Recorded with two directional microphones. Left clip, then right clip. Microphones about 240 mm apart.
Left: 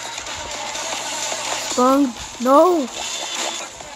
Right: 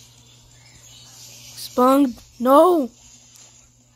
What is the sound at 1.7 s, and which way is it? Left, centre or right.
Speech, centre.